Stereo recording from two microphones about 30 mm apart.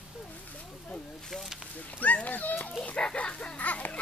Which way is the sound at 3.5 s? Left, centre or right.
Left.